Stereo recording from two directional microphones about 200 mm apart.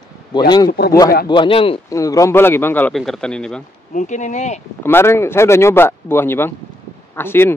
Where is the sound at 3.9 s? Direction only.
40° left (ahead or behind).